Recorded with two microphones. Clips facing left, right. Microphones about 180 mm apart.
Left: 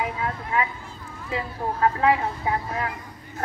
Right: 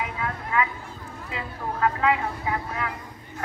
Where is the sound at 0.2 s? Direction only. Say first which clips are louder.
Even; 30° left (ahead or behind).